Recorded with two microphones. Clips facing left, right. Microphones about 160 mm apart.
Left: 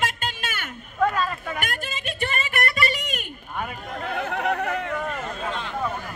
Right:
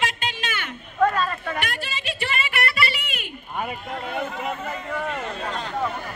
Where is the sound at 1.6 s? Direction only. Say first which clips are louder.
Right 1 dB; 50° left (ahead or behind).